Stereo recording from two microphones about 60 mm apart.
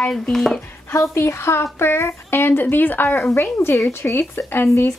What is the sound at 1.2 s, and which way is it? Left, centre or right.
A woman's voice, left.